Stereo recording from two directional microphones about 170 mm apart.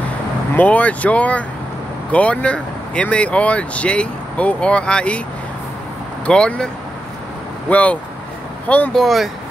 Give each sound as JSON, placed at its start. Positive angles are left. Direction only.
{"t": 0.6, "sound": "speech", "side_deg": 10}
{"t": 6.2, "sound": "speech", "side_deg": 5}
{"t": 7.7, "sound": "speech", "side_deg": 10}